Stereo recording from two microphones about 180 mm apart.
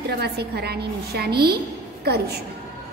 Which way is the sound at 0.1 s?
60° right (ahead or behind).